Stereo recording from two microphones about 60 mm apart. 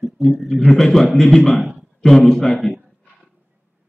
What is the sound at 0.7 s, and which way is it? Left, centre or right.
A man's voice, centre.